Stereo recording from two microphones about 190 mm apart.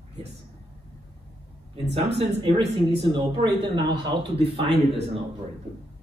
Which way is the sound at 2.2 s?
30° right (ahead or behind).